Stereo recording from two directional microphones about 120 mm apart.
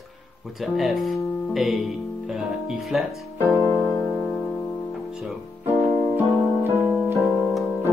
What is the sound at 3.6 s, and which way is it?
Music, 25° left (ahead or behind).